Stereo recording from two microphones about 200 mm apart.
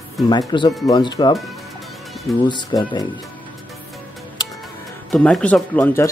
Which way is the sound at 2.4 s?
20° left (ahead or behind).